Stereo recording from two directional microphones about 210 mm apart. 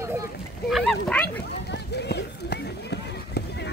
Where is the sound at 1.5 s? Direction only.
50° left (ahead or behind).